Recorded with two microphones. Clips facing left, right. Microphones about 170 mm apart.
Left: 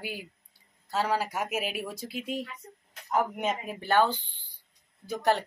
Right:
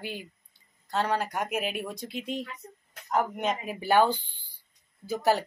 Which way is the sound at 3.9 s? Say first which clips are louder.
Right 2 dB; 10° right (ahead or behind).